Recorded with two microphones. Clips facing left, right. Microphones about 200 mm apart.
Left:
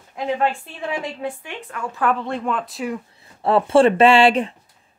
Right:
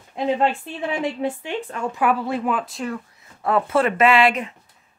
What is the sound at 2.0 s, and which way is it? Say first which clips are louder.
Speech: even; 5° right (ahead or behind).